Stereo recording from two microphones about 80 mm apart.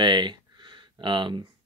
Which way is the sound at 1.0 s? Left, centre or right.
Right.